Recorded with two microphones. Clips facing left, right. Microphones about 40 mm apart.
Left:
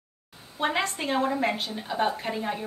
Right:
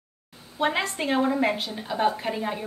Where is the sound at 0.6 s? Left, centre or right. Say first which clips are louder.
Right 2 dB; centre.